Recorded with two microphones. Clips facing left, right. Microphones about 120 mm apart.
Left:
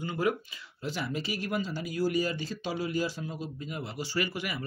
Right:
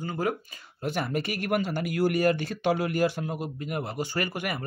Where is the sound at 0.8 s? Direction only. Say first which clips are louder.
Right 5 dB; 55° right (ahead or behind).